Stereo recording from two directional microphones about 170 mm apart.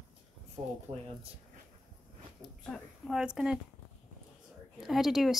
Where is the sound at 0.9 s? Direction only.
40° right (ahead or behind).